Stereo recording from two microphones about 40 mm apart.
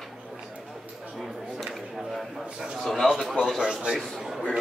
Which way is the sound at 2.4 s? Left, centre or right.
Right.